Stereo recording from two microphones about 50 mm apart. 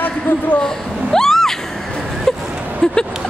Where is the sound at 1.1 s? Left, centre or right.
Centre.